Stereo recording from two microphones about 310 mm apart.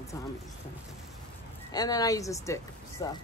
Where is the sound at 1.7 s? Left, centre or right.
Centre.